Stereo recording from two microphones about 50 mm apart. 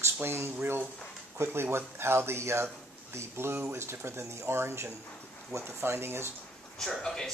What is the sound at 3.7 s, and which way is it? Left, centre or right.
Speech, right.